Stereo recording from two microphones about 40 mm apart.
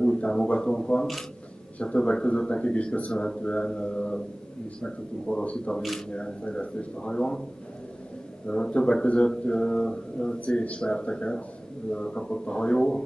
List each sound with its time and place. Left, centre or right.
0.2 s a man's voice: centre
5.3 s a man's voice: left
8.5 s speech: left
10.4 s a man's voice: left